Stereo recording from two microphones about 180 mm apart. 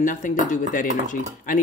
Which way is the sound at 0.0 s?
45° left (ahead or behind).